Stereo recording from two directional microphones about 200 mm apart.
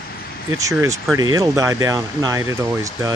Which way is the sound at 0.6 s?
15° right (ahead or behind).